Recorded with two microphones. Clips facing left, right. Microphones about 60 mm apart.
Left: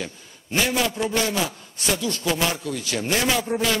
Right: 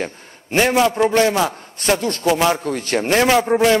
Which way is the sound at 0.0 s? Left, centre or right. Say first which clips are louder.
Right 7 dB; right.